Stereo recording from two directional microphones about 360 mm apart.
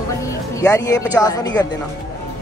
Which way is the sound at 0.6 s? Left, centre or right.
Centre.